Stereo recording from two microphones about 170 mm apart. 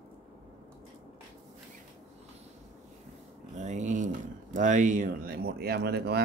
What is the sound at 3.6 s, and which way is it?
Speech, 45° right (ahead or behind).